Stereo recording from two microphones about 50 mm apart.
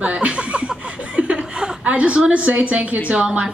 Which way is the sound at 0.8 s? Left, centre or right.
Right.